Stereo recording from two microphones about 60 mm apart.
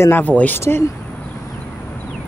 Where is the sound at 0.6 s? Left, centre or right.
Left.